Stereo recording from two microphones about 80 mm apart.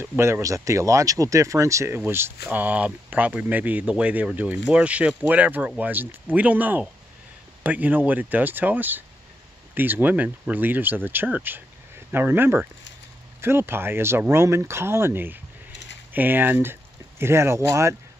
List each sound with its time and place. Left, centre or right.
0.2 s speech: right